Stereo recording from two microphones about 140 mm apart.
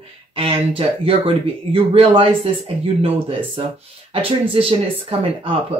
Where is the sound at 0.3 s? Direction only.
45° right (ahead or behind).